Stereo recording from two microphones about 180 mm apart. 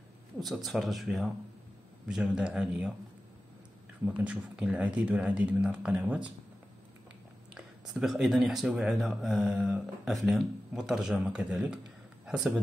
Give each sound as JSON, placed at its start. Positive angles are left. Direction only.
{"t": 0.4, "sound": "speech", "side_deg": 0}
{"t": 4.0, "sound": "speech", "side_deg": -5}
{"t": 7.5, "sound": "speech", "side_deg": 0}